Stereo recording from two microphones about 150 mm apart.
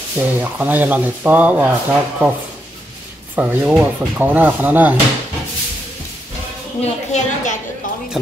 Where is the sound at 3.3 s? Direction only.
10° right (ahead or behind).